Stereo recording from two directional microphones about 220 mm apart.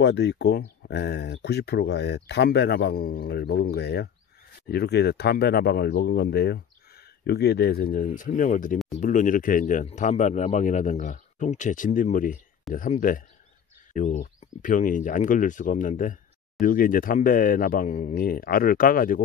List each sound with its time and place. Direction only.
0.0 s speech: 50° left (ahead or behind)